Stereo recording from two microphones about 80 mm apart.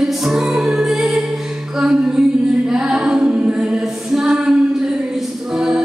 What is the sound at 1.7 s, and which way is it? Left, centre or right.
A capella, centre.